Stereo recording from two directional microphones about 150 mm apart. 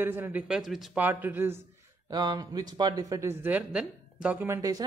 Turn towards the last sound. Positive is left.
turn(degrees=-25)  # may be behind; listen again after turning